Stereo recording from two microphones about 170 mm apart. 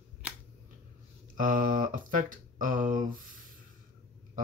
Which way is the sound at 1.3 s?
50° right (ahead or behind).